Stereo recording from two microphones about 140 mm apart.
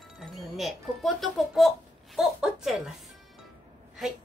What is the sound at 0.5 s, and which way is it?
A woman's voice, centre (ahead or behind).